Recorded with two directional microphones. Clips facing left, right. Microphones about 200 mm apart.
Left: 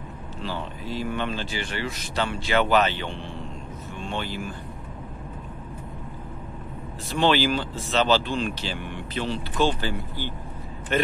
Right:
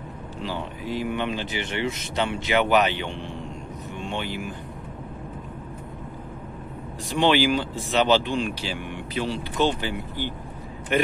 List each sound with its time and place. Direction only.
0.4 s speech: 15° right (ahead or behind)
7.1 s speech: 15° right (ahead or behind)